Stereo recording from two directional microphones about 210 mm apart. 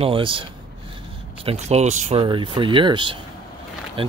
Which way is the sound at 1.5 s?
30° right (ahead or behind).